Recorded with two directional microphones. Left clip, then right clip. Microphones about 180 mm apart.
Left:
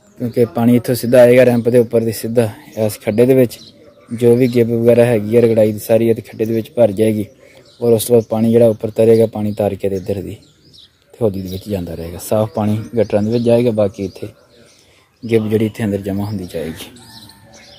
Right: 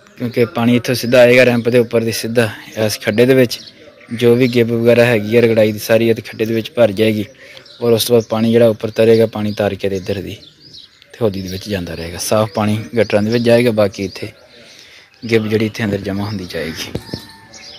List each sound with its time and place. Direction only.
0.2 s speech: 10° left (ahead or behind)
0.5 s speech: 20° left (ahead or behind)